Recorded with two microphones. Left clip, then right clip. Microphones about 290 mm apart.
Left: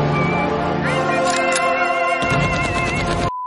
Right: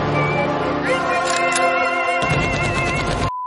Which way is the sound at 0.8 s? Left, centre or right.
Centre.